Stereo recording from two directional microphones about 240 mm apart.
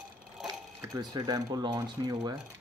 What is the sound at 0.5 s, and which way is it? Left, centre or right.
Speech, centre.